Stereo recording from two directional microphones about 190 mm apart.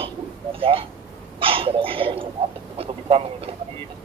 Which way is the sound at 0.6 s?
30° right (ahead or behind).